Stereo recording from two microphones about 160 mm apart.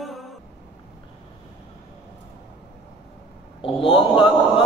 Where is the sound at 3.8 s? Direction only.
35° left (ahead or behind).